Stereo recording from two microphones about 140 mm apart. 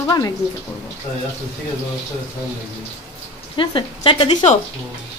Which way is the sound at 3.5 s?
35° left (ahead or behind).